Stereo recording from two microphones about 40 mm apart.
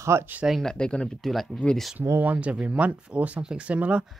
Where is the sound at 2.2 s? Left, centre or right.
Right.